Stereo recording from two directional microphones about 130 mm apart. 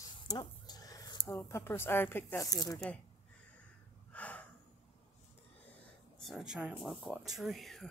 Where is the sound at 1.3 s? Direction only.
20° left (ahead or behind).